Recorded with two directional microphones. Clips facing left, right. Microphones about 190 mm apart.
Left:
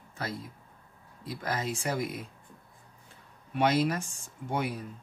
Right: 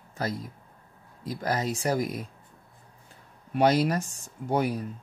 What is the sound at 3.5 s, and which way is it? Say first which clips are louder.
Speech: right 4 dB; 40° right (ahead or behind).